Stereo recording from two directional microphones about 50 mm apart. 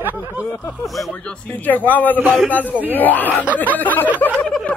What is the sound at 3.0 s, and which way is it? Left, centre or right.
Speech, left.